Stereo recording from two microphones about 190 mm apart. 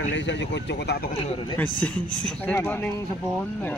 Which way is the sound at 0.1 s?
70° left (ahead or behind).